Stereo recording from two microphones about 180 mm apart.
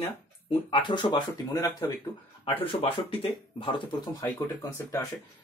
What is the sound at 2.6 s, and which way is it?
Speech, 30° left (ahead or behind).